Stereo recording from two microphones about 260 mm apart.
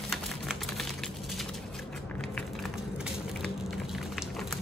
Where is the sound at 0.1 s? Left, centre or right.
Centre.